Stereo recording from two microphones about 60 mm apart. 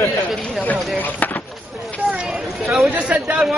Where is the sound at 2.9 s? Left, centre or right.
Centre.